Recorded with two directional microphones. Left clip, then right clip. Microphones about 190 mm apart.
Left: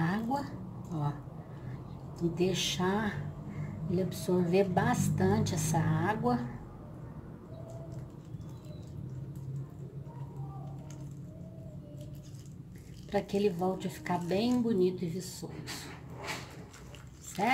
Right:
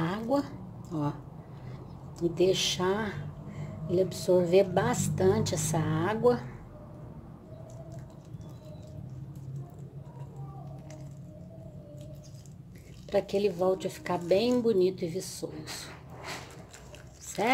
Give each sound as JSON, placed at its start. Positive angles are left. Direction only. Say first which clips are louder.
{"t": 0.0, "sound": "a sound", "louder": "right 4 dB", "side_deg": -40}
{"t": 2.1, "sound": "a woman's voice", "louder": "right 5 dB", "side_deg": -45}
{"t": 13.1, "sound": "a woman's voice", "louder": "right 3 dB", "side_deg": -45}